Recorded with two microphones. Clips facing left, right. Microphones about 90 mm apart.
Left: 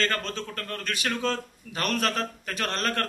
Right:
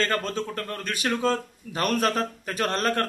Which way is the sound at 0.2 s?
10° right (ahead or behind).